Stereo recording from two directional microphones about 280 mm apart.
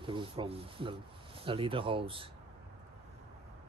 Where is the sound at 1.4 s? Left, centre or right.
Centre.